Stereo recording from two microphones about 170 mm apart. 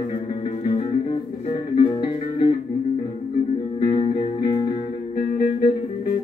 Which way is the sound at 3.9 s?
30° left (ahead or behind).